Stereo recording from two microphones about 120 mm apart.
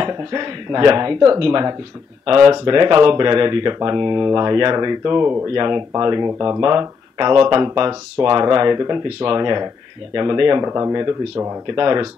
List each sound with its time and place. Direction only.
0.0 s speech: 30° right (ahead or behind)
5.5 s speech: 35° right (ahead or behind)
10.6 s speech: 25° right (ahead or behind)